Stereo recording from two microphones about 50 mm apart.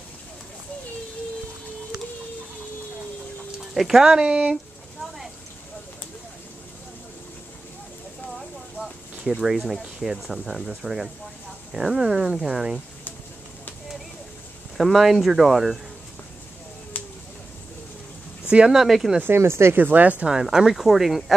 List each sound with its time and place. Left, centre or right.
3.5 s speech: centre
8.4 s a sound: centre
9.2 s speech: centre
9.5 s speech: centre
12.4 s speech: centre
14.8 s speech: centre
17.0 s a sound: left
18.7 s speech: centre
19.2 s speech: right
19.8 s speech: right
20.4 s speech: centre
20.7 s speech: centre